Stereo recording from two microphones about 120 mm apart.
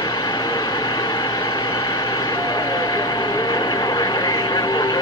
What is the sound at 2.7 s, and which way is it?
Vehicle, 35° left (ahead or behind).